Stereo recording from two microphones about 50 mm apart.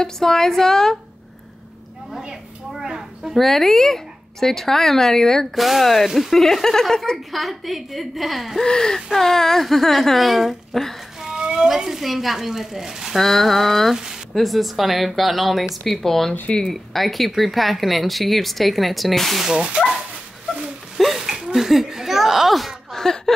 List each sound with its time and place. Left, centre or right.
0.0 s a woman's voice: centre
3.3 s speech: centre
8.6 s a woman's voice: centre
11.2 s speech: centre
13.2 s speech: centre
19.4 s speech: centre
21.0 s a sound: centre